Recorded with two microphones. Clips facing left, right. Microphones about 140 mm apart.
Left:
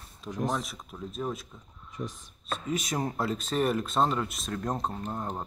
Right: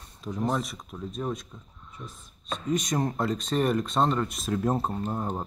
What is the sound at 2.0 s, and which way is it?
Speech, 90° left.